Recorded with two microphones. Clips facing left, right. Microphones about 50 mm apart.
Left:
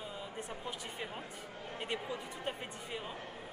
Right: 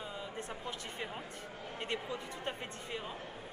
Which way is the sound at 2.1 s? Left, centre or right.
Centre.